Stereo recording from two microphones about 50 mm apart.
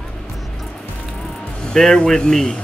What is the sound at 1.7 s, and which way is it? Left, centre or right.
Speech, centre.